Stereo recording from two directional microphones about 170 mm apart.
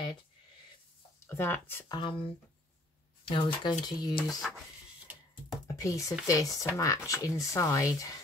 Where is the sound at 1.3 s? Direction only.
15° left (ahead or behind).